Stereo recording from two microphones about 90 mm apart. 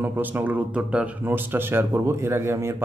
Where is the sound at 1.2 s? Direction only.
25° right (ahead or behind).